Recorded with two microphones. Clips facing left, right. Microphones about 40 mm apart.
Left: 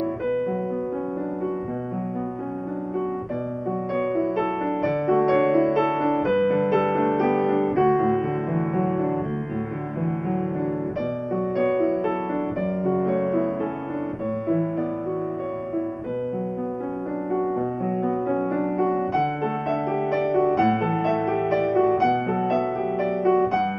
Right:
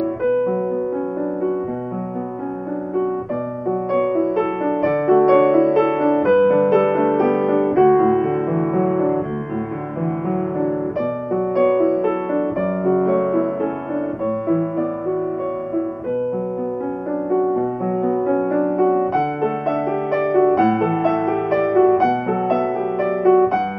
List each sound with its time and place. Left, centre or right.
0.2 s music: centre
3.9 s music: centre
11.5 s music: centre
14.5 s music: centre
17.3 s music: centre
20.3 s music: centre
20.6 s music: centre